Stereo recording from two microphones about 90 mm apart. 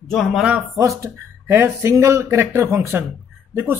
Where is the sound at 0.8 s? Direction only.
35° right (ahead or behind).